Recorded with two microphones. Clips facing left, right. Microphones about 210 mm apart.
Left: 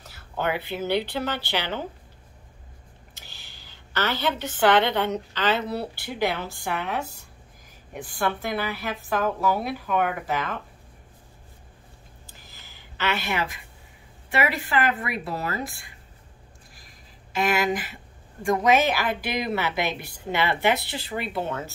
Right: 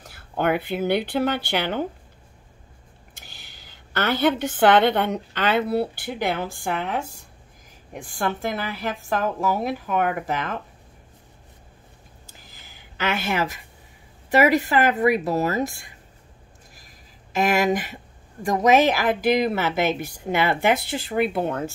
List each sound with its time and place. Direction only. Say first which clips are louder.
0.0 s speech: right 4 dB; 50° right (ahead or behind)
3.9 s speech: right 5 dB; 50° right (ahead or behind)
8.0 s speech: right 1 dB; 45° right (ahead or behind)
13.0 s a woman's voice: right 3 dB; 45° right (ahead or behind)
17.3 s speech: right 3 dB; 45° right (ahead or behind)